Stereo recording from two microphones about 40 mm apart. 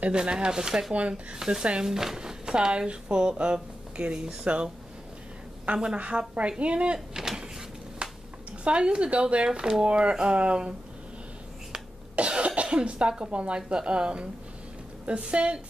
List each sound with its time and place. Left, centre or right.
0.1 s speech: right
0.9 s a woman's voice: right
1.3 s speech: centre
4.5 s a woman's voice: right
5.7 s speech: right
5.9 s a woman's voice: right
7.2 s a sound: centre
8.0 s a sound: right
8.6 s speech: right
12.2 s cough: right
12.6 s speech: right